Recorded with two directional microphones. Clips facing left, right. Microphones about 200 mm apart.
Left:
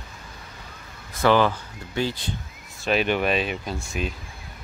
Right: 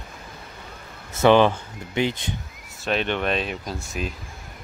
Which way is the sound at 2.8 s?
5° left (ahead or behind).